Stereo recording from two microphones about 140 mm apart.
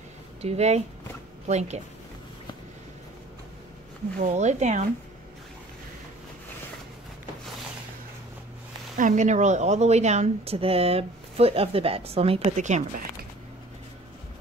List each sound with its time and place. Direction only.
0.4 s a woman's voice: 50° right (ahead or behind)
4.2 s speech: 55° right (ahead or behind)
8.9 s a woman's voice: 65° right (ahead or behind)